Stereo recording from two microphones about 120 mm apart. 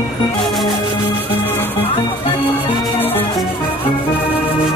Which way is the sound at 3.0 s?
15° left (ahead or behind).